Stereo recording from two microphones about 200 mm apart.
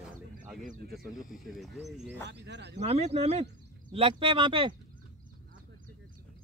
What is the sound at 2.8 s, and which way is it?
Speech, 35° right (ahead or behind).